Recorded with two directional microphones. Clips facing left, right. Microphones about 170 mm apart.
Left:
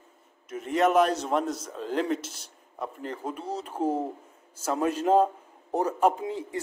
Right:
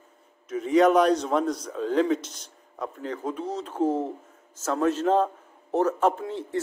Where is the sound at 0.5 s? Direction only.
Centre (ahead or behind).